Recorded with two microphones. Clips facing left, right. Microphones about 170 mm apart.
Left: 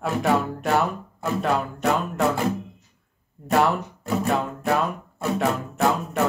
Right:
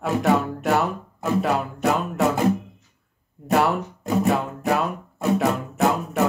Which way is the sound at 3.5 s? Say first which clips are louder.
Even; 5° right (ahead or behind).